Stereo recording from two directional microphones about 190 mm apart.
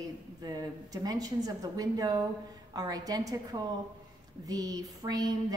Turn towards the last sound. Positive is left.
turn(degrees=-20)  # may be behind; listen again after turning